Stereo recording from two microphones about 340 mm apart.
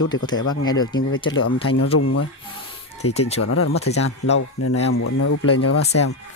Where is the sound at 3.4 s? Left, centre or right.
Left.